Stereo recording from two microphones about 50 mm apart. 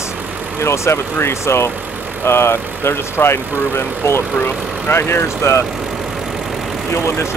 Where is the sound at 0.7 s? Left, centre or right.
Left.